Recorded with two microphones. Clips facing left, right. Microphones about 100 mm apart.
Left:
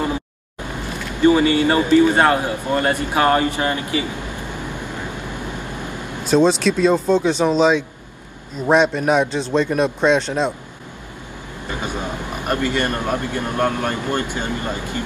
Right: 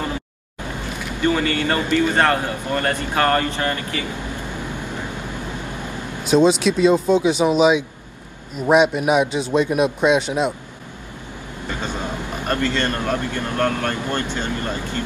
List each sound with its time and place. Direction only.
1.2 s speech: 15° left (ahead or behind)
6.2 s speech: 5° right (ahead or behind)
11.8 s speech: 15° left (ahead or behind)